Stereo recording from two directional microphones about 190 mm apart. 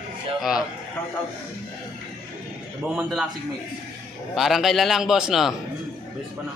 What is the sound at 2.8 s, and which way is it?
Speech, centre (ahead or behind).